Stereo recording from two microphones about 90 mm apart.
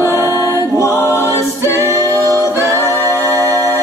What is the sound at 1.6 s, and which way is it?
A capella, 30° right (ahead or behind).